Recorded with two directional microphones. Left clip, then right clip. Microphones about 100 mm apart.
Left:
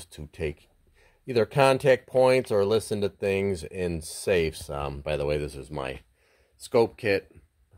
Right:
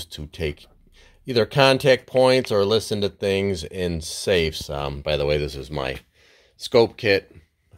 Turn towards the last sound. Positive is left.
turn(degrees=25)  # may be behind; listen again after turning